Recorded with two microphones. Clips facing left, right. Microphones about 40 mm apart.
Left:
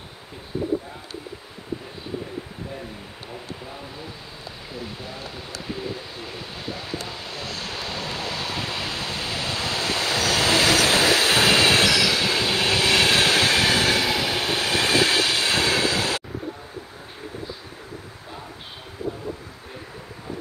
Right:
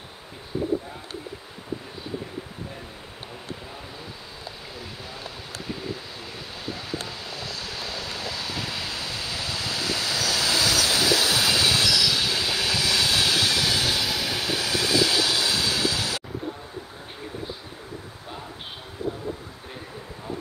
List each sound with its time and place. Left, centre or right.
7.3 s vehicle: left
7.7 s waves: left
19.0 s vehicle: right